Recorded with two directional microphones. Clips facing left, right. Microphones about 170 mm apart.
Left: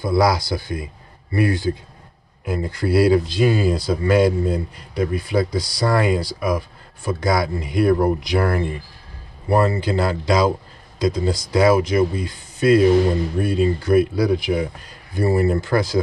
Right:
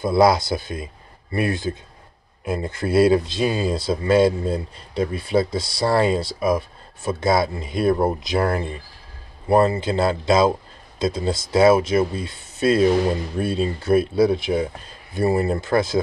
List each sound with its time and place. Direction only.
0.0 s speech: 25° right (ahead or behind)